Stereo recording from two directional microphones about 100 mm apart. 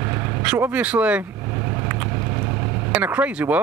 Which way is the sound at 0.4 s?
15° right (ahead or behind).